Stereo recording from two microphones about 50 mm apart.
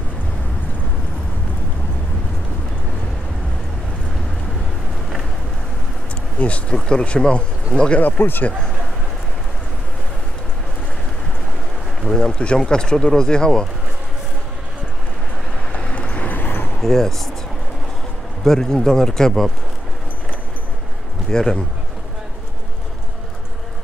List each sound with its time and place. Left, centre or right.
6.4 s speech: left
6.7 s speech: centre
8.0 s speech: left
12.1 s speech: centre
15.7 s vehicle: left
16.3 s a sound: left
16.8 s speech: centre
18.4 s speech: centre
21.3 s speech: centre